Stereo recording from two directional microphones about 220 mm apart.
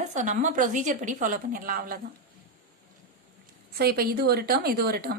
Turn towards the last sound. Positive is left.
turn(degrees=-45)  # may be behind; listen again after turning